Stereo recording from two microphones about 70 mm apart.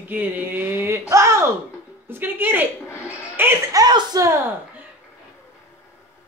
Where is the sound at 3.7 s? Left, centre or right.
Right.